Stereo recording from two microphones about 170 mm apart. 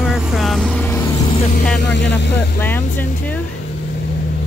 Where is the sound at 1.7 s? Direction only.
90° left.